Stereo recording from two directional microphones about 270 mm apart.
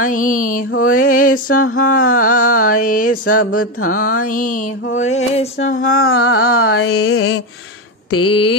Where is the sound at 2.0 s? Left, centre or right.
Left.